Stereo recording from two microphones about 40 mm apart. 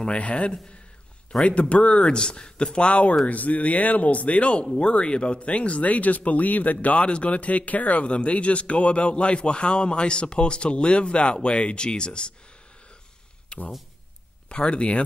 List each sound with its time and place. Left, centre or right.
0.2 s a man's voice: left
13.5 s a sound: left
14.5 s a man's voice: left